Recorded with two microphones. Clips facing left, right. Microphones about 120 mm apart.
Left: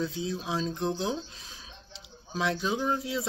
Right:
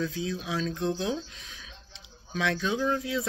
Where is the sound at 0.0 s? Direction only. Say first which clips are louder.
Even; 25° left (ahead or behind).